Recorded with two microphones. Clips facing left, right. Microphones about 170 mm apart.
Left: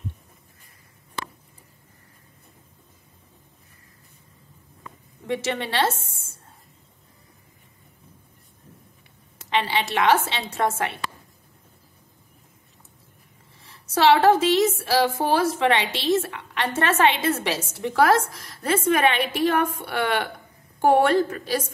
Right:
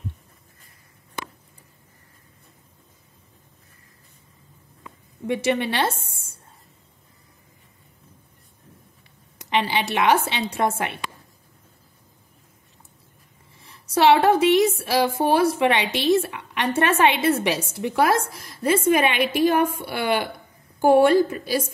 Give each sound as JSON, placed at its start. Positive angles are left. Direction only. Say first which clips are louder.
{"t": 5.2, "sound": "a woman's voice", "louder": "right 4 dB", "side_deg": -15}
{"t": 9.4, "sound": "a woman's voice", "louder": "right 1 dB", "side_deg": -15}
{"t": 13.9, "sound": "a woman's voice", "louder": "even", "side_deg": -15}